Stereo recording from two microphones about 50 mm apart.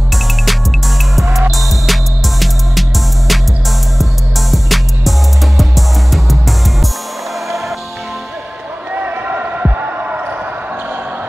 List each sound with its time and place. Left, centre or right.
0.1 s music: centre
8.9 s basketball bounce: right